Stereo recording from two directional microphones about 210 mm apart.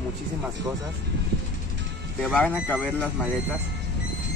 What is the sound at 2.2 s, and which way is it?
Speech, 5° left (ahead or behind).